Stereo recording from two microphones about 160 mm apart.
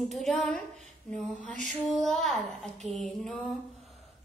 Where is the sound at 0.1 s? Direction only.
Centre (ahead or behind).